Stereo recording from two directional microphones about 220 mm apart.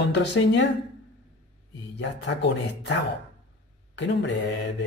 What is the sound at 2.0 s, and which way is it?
Speech, 55° left (ahead or behind).